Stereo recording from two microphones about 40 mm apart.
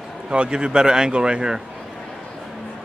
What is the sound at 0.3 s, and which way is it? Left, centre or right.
Speech, right.